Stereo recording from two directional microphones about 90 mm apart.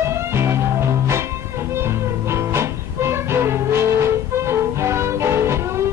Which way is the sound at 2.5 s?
30° right (ahead or behind).